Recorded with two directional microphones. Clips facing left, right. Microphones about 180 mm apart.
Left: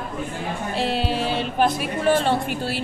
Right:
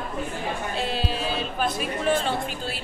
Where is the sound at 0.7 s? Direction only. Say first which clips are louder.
Left 9 dB; 70° left (ahead or behind).